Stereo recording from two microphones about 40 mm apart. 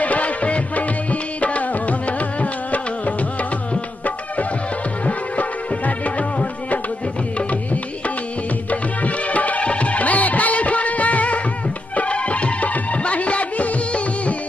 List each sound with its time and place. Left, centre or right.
0.0 s music: left
5.0 s music: left
8.6 s music: left